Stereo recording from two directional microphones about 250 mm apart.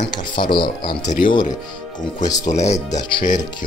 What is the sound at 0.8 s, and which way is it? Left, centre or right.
Speech, left.